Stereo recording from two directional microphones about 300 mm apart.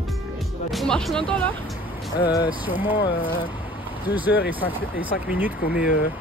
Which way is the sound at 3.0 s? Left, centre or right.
Left.